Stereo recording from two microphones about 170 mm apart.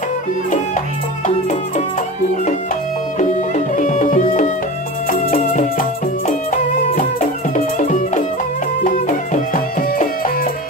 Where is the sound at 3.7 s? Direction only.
45° left (ahead or behind).